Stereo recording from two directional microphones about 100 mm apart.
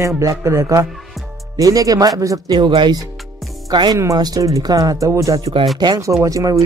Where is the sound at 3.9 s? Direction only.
35° right (ahead or behind).